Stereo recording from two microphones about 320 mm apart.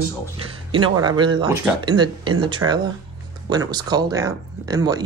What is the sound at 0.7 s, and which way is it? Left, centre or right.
Speech, centre.